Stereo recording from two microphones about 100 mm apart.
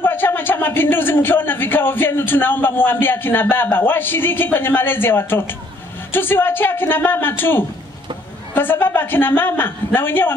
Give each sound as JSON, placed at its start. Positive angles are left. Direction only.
{"t": 0.0, "sound": "a man's voice", "side_deg": 20}